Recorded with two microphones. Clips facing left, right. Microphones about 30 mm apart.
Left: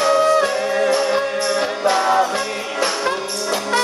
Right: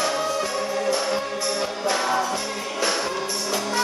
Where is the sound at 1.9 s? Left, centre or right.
Left.